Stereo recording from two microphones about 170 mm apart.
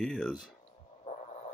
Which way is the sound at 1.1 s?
40° left (ahead or behind).